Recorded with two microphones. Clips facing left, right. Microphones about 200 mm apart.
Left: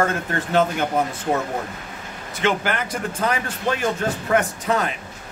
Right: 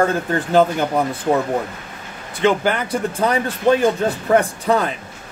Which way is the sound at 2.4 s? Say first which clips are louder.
Right 5 dB; 30° right (ahead or behind).